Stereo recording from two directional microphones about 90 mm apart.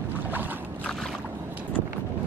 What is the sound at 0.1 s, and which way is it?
Boat, 20° right (ahead or behind).